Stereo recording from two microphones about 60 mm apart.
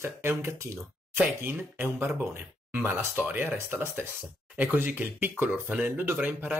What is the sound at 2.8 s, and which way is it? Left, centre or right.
A man's voice, right.